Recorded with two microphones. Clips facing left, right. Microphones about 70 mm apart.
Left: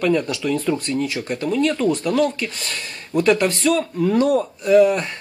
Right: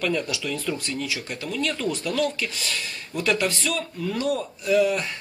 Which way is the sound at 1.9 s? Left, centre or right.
Left.